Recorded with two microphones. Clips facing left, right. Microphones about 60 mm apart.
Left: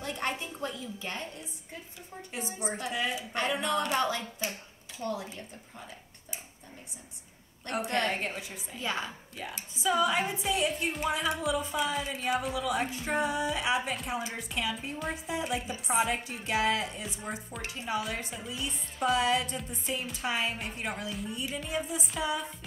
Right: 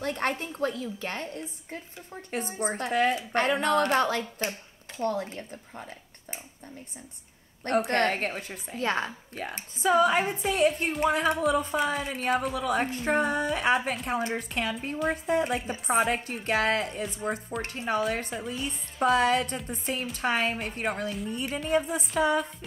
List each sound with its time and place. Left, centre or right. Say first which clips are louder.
0.0 s speech: right 5 dB; right
7.9 s speech: right 4 dB; right
18.6 s speech: right 4 dB; right